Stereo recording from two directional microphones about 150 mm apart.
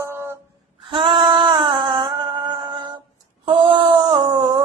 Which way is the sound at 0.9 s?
35° right (ahead or behind).